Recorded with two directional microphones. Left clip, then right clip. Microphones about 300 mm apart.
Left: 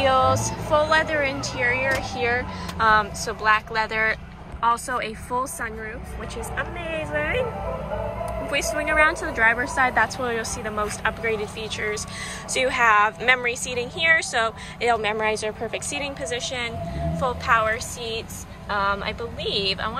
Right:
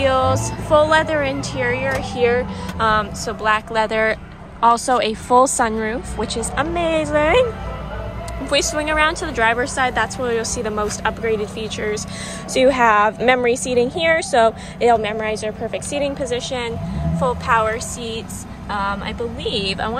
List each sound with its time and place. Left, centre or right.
0.0 s a woman's voice: centre
8.5 s a woman's voice: centre